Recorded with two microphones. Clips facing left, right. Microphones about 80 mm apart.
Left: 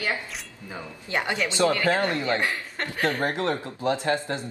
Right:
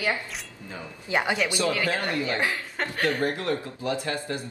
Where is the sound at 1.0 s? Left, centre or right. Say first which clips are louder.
Right 2 dB; centre.